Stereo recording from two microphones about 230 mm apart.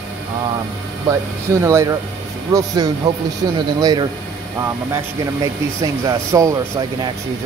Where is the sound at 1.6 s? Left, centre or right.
Centre.